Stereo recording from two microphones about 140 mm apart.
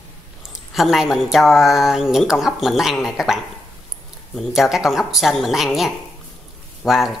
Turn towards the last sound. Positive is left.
turn(degrees=0)  # may be behind; listen again after turning